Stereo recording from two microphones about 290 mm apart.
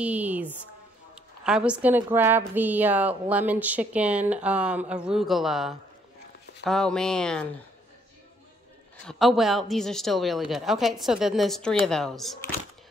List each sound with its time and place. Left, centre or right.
0.0 s a woman's voice: centre
9.0 s a woman's voice: centre